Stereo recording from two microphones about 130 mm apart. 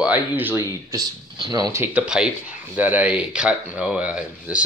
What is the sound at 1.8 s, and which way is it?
Speech, 10° right (ahead or behind).